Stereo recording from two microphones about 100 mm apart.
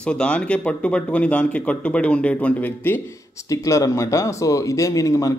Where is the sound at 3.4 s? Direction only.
35° left (ahead or behind).